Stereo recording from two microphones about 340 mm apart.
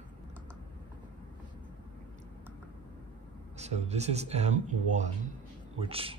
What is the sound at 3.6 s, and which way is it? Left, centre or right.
Speech, centre.